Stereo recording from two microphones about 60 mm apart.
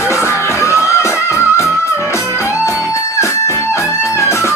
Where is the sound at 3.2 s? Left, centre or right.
Left.